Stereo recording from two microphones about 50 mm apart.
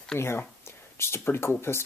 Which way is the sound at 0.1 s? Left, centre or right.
Left.